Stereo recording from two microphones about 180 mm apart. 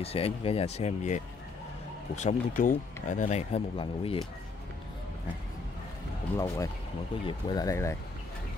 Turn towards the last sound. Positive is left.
turn(degrees=15)  # may be behind; listen again after turning